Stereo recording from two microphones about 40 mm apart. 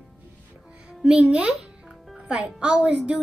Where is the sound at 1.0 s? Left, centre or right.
Right.